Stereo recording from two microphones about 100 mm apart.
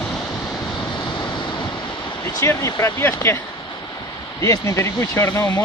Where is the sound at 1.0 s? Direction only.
50° left (ahead or behind).